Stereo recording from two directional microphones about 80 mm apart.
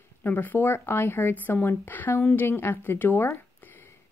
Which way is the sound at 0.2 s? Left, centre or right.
Left.